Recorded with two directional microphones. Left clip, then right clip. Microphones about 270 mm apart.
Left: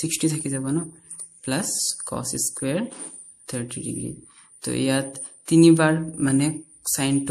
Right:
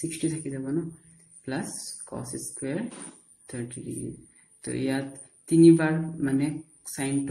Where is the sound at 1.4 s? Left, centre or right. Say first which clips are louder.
Left 8 dB; left.